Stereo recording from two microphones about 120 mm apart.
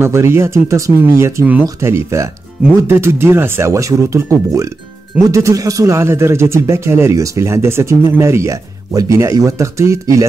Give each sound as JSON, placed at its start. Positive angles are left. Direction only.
{"t": 0.0, "sound": "a man's voice", "side_deg": -20}